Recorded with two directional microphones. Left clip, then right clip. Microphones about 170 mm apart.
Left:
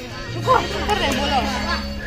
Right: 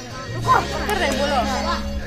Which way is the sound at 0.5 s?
15° right (ahead or behind).